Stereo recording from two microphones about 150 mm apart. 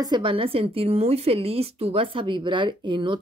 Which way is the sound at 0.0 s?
30° right (ahead or behind).